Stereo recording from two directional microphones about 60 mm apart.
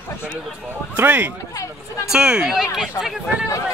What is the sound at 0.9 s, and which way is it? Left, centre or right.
Speech, right.